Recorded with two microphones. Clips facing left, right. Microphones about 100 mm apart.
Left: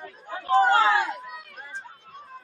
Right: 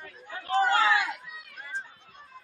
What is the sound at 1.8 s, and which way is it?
Chatter, 45° left (ahead or behind).